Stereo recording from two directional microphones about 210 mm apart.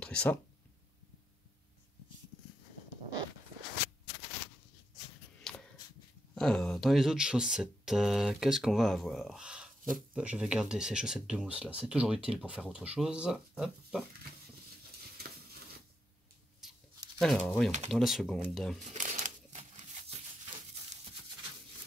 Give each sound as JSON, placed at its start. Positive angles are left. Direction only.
{"t": 0.0, "sound": "a sound", "side_deg": 5}
{"t": 5.4, "sound": "a sound", "side_deg": 5}
{"t": 6.3, "sound": "speech", "side_deg": 5}
{"t": 17.2, "sound": "speech", "side_deg": 5}
{"t": 17.6, "sound": "speech", "side_deg": -35}
{"t": 17.9, "sound": "speech", "side_deg": 0}
{"t": 18.9, "sound": "crumpling", "side_deg": -35}